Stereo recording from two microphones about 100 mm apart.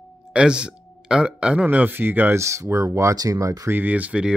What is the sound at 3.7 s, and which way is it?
Speech, 15° right (ahead or behind).